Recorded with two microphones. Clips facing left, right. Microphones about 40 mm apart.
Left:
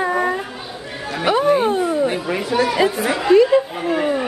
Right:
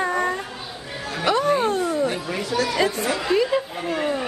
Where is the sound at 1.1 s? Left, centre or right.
Centre.